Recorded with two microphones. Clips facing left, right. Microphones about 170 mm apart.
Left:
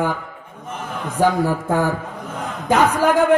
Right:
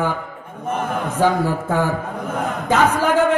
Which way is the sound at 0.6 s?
55° right (ahead or behind).